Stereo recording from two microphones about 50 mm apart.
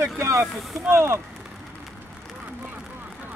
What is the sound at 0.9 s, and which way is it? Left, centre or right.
Speech, right.